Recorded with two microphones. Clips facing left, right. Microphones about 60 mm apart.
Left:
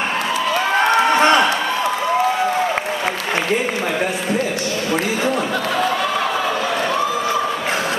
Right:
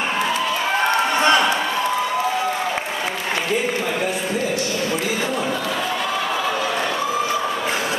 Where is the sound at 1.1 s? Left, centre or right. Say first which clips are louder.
Left 2 dB; left.